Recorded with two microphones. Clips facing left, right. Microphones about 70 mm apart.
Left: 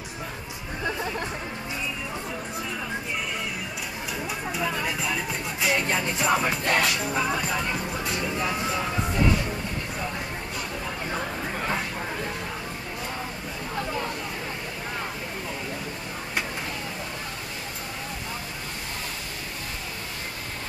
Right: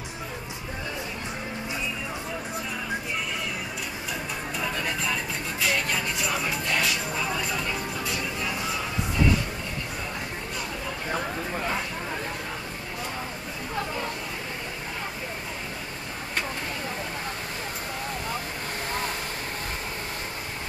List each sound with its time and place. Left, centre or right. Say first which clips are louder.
5.6 s music: left 2 dB; left
6.4 s music: left 4 dB; left